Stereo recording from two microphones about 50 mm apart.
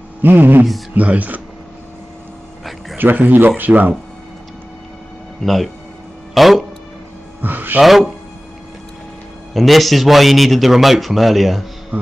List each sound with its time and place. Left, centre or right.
0.2 s speech: right
3.0 s speech: right
5.4 s a man's voice: centre
7.4 s speech: right
7.8 s a man's voice: centre
9.5 s a man's voice: centre